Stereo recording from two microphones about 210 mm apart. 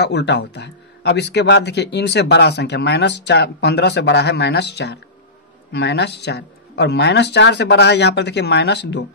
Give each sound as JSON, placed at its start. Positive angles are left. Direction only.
{"t": 0.0, "sound": "a man's voice", "side_deg": 55}